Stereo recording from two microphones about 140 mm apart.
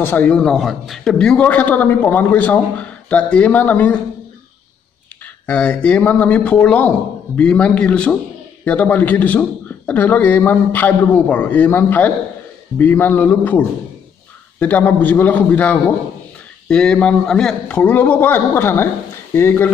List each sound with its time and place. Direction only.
0.0 s a man's voice: 15° left (ahead or behind)
5.2 s a man's voice: 10° left (ahead or behind)